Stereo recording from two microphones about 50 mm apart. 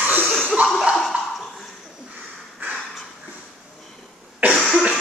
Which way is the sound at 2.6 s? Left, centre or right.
Right.